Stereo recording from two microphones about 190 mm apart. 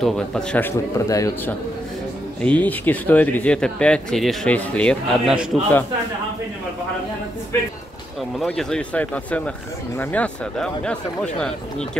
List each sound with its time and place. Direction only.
0.0 s speech: 5° left (ahead or behind)
8.4 s speech: centre (ahead or behind)